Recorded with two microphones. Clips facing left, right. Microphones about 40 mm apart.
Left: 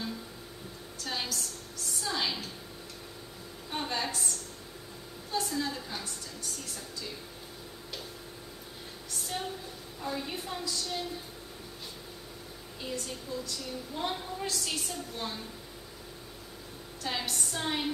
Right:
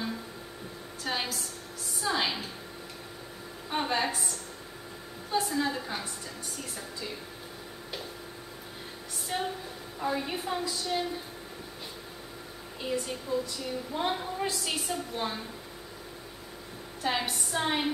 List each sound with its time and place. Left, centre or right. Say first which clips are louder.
1.0 s a woman's voice: right 3 dB; centre
3.7 s a woman's voice: right 5 dB; centre
5.3 s a woman's voice: right 4 dB; centre
9.3 s a woman's voice: right 5 dB; centre
12.8 s a woman's voice: right 5 dB; centre
17.0 s a woman's voice: right 4 dB; centre